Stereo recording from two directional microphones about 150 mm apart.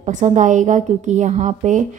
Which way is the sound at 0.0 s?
55° right (ahead or behind).